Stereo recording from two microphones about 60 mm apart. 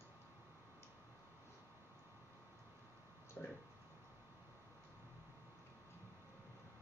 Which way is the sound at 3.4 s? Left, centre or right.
Left.